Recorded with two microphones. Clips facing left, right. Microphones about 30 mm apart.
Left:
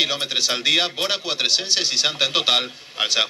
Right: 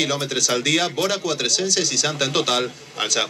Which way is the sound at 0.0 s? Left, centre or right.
Left.